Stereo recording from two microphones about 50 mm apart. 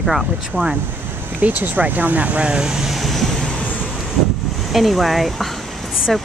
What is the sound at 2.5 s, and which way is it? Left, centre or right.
Vehicle, centre.